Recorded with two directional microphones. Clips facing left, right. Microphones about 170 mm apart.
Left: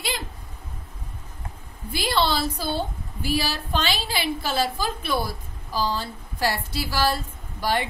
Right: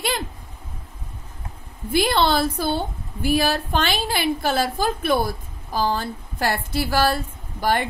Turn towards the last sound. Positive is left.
turn(degrees=-50)  # may be behind; listen again after turning